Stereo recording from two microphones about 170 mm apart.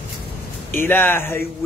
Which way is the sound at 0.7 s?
15° left (ahead or behind).